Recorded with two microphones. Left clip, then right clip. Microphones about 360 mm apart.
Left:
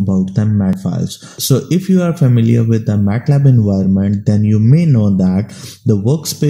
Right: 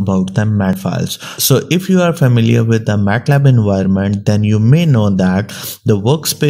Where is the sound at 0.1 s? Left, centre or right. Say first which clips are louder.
Right 5 dB; right.